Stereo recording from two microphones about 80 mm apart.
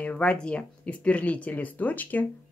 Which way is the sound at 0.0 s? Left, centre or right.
Centre.